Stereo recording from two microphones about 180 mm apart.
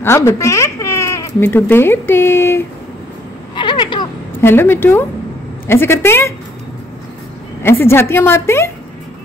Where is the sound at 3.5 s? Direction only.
25° left (ahead or behind).